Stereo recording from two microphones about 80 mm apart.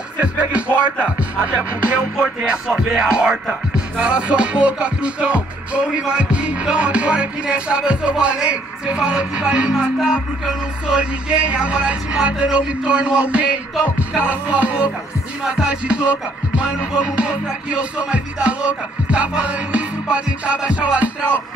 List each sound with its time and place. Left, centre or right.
0.2 s music: centre
2.1 s music: centre